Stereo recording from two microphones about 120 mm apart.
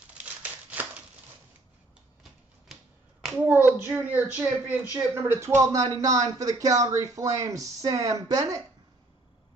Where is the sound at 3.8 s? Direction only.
15° right (ahead or behind).